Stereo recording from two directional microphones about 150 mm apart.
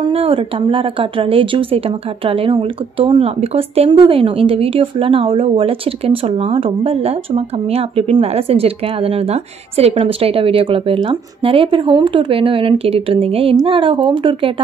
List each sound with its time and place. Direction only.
0.0 s speech: 40° right (ahead or behind)